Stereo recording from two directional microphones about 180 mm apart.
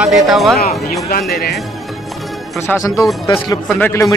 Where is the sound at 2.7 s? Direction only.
20° left (ahead or behind).